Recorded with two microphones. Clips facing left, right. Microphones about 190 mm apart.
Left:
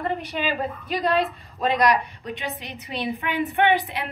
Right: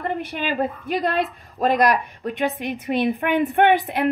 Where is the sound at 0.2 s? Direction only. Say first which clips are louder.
Right 3 dB; 55° right (ahead or behind).